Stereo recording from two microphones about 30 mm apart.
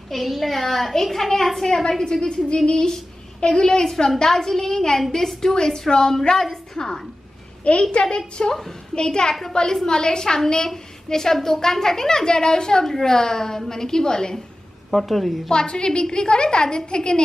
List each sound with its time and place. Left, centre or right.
0.1 s a child's voice: centre
2.1 s a woman's voice: left
3.8 s a woman's voice: centre
7.7 s a woman's voice: left
8.4 s a woman's voice: left
12.8 s a woman's voice: centre
14.9 s a child's voice: centre
15.5 s a woman's voice: left